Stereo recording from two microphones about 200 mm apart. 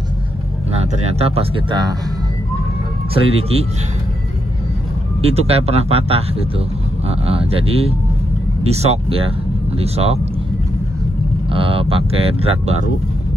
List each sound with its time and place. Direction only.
0.7 s speech: 30° right (ahead or behind)
3.2 s speech: 30° right (ahead or behind)
5.2 s speech: 30° right (ahead or behind)
11.5 s speech: 25° right (ahead or behind)